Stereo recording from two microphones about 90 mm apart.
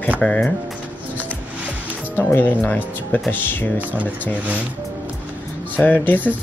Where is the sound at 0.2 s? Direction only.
10° left (ahead or behind).